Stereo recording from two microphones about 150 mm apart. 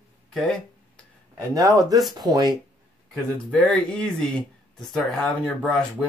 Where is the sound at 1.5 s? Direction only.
25° right (ahead or behind).